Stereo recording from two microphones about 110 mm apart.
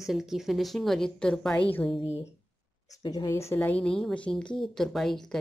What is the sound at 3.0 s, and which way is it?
Speech, 40° left (ahead or behind).